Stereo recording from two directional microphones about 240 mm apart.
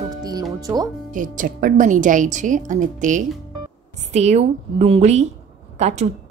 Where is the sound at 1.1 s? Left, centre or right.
Right.